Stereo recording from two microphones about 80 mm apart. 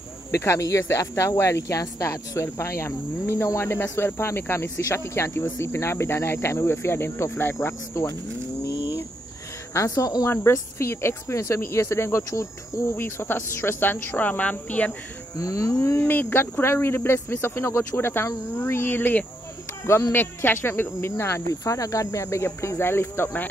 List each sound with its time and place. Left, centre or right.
0.4 s speech: left
8.7 s bird: left
9.8 s speech: left
10.2 s speech: left; by 14.9 s centre
15.3 s speech: left
16.1 s speech: left